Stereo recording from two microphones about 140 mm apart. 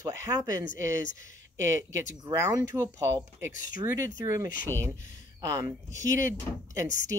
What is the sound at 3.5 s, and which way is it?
Speech, 70° left (ahead or behind).